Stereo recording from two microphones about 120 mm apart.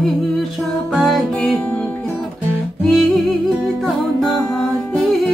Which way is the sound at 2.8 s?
Centre (ahead or behind).